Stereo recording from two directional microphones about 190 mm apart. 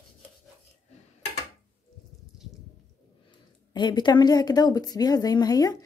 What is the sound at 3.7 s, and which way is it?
A woman's voice, 25° left (ahead or behind).